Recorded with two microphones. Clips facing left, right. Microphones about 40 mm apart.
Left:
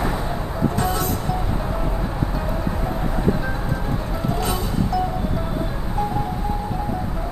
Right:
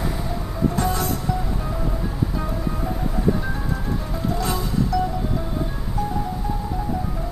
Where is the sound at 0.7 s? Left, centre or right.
Left.